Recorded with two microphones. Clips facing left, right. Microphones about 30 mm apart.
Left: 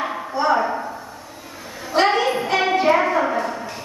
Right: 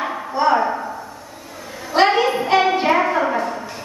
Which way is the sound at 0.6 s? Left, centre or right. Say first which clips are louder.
Right 1 dB; centre.